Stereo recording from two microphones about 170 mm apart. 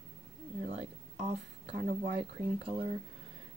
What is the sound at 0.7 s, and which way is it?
Speech, 40° right (ahead or behind).